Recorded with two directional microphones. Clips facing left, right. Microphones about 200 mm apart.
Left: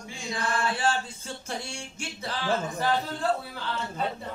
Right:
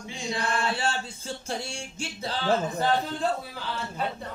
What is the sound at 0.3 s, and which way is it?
Music, 25° right (ahead or behind).